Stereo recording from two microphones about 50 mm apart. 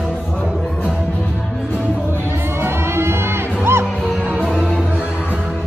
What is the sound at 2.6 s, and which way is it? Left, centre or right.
Music, right.